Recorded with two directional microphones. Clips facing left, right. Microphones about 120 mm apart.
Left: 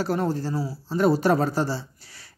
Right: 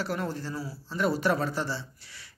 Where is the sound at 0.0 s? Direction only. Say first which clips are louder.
Left 7 dB; 35° left (ahead or behind).